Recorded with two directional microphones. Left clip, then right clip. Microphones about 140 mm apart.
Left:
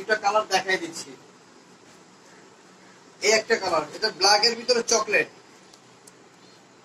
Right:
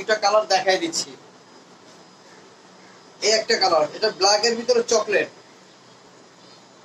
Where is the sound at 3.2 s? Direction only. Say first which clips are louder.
Right 2 dB; 25° right (ahead or behind).